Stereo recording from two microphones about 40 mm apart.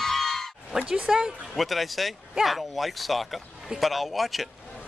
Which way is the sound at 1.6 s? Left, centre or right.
Centre.